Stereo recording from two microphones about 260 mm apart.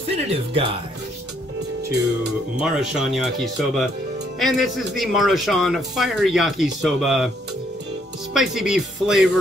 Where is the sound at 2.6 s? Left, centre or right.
Centre.